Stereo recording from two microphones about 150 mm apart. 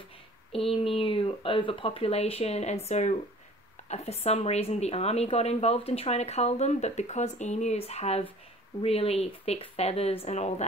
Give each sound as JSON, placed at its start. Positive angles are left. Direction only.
{"t": 0.7, "sound": "a woman's voice", "side_deg": 40}